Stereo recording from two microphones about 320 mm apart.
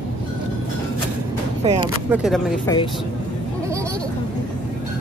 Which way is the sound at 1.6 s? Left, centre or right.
Centre.